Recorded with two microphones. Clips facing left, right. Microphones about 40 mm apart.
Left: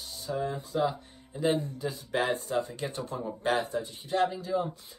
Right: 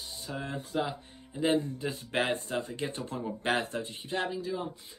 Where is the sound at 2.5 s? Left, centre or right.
Right.